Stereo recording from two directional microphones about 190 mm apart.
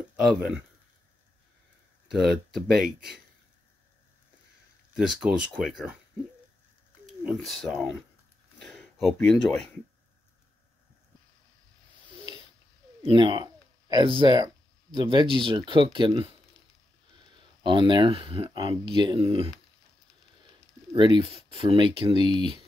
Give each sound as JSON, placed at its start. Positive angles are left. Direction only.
{"t": 0.3, "sound": "speech", "side_deg": -5}
{"t": 2.0, "sound": "speech", "side_deg": 0}
{"t": 4.9, "sound": "speech", "side_deg": -5}
{"t": 7.1, "sound": "speech", "side_deg": 0}
{"t": 8.5, "sound": "a sound", "side_deg": 0}
{"t": 13.0, "sound": "speech", "side_deg": -25}
{"t": 17.6, "sound": "speech", "side_deg": -25}
{"t": 20.9, "sound": "speech", "side_deg": -25}